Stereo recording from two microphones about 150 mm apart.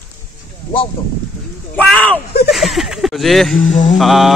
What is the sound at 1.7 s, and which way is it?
Speech, 10° left (ahead or behind).